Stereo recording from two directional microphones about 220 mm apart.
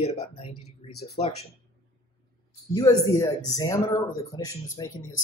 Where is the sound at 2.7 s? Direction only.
15° left (ahead or behind).